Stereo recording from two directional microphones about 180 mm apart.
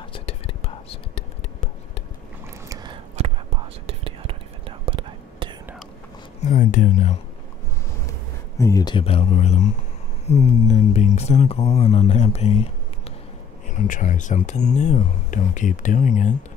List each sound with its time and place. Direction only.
0.1 s whispering: 30° left (ahead or behind)
2.7 s a sound: 25° right (ahead or behind)
3.8 s whispering: 30° right (ahead or behind)
6.4 s speech: 45° left (ahead or behind)
8.1 s speech: 15° left (ahead or behind); by 12.6 s 35° left (ahead or behind)
13.7 s speech: 45° left (ahead or behind)